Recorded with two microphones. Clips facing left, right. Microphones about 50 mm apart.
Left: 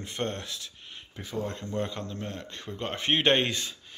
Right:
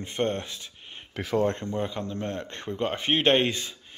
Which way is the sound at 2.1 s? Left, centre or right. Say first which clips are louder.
Right 5 dB; right.